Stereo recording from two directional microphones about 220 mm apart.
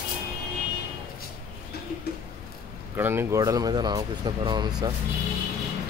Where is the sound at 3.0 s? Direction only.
10° right (ahead or behind).